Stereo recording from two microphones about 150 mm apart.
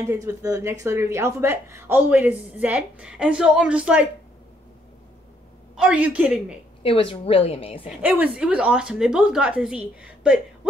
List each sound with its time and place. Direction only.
0.0 s speech: 20° right (ahead or behind)
5.8 s speech: 5° right (ahead or behind)
6.8 s a woman's voice: 40° left (ahead or behind)
8.0 s a woman's voice: 10° right (ahead or behind)